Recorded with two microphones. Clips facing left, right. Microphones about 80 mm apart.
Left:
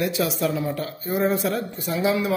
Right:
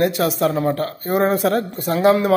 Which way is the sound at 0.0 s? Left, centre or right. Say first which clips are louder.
Right 6 dB; right.